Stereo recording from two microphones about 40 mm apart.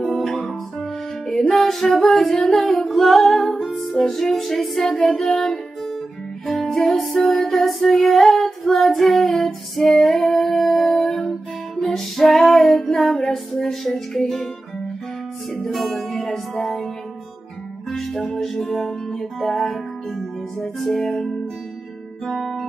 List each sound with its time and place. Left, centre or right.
0.0 s music: centre
1.3 s female singing: centre
2.7 s music: centre
5.0 s guitar: centre
6.4 s music: centre
7.5 s child singing: centre
10.5 s music: centre
13.1 s music: centre
13.5 s music: centre
15.5 s music: centre
16.2 s music: centre
17.8 s music: centre
22.2 s guitar: centre